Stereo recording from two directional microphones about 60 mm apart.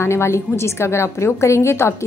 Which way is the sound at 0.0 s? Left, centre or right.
Left.